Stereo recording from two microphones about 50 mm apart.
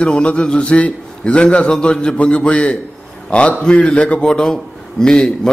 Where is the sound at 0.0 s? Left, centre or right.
Left.